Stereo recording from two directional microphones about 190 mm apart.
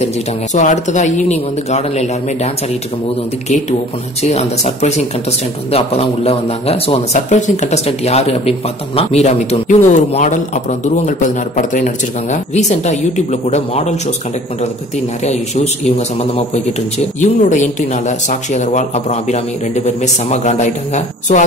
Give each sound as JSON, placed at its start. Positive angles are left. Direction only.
{"t": 0.6, "sound": "a man's voice", "side_deg": 40}
{"t": 4.2, "sound": "a man's voice", "side_deg": 35}
{"t": 15.2, "sound": "a man's voice", "side_deg": 35}